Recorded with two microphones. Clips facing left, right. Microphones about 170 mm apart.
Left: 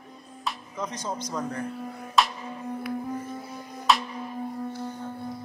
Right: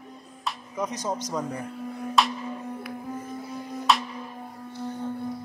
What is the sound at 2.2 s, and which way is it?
Music, centre (ahead or behind).